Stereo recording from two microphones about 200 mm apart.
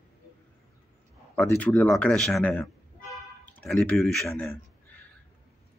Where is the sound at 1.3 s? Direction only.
5° left (ahead or behind).